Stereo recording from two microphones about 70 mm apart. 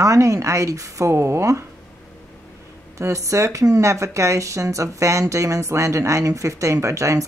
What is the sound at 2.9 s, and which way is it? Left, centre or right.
Speech, right.